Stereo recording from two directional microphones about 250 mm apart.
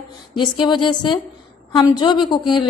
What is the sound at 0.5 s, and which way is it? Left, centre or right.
A woman's voice, centre.